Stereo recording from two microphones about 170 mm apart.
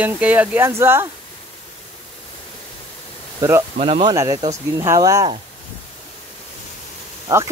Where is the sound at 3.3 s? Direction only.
15° right (ahead or behind).